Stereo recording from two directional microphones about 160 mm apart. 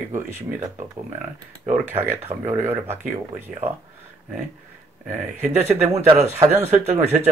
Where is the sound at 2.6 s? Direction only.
15° right (ahead or behind).